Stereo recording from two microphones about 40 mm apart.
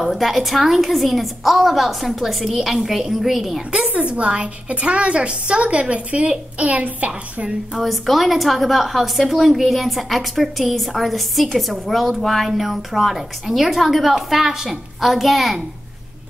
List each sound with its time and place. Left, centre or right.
0.0 s a woman's voice: centre
3.9 s a woman's voice: right
7.8 s a woman's voice: centre